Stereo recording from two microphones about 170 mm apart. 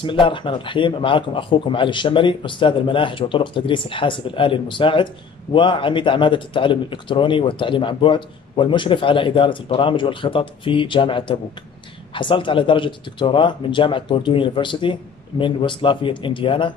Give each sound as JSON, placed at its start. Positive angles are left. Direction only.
{"t": 0.0, "sound": "a man's voice", "side_deg": 30}